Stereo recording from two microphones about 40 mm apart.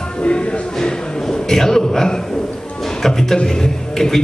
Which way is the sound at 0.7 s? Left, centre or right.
Centre.